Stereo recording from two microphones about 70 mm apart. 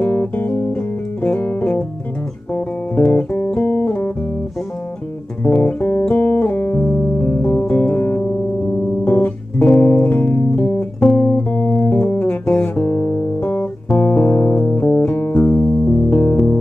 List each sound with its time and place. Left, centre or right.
0.0 s music: left
3.1 s music: left
5.6 s music: left
11.1 s guitar: left
13.9 s music: left